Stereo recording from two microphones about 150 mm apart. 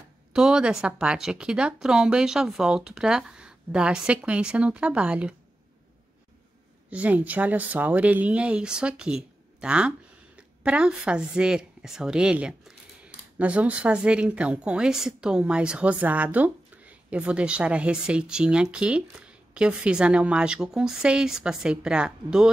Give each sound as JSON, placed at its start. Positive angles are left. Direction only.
{"t": 0.3, "sound": "speech", "side_deg": -5}
{"t": 6.9, "sound": "speech", "side_deg": -10}